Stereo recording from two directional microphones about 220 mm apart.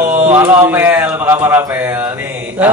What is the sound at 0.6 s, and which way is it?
A man's voice, 10° right (ahead or behind).